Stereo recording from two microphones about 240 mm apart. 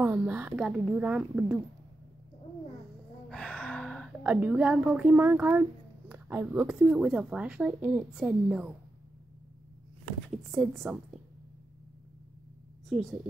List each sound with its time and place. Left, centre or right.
0.0 s a woman's voice: centre
3.3 s a woman's voice: centre
10.5 s a woman's voice: centre
12.9 s a woman's voice: centre